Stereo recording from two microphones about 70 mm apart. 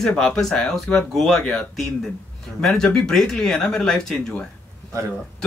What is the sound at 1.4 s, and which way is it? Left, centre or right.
Speech, centre.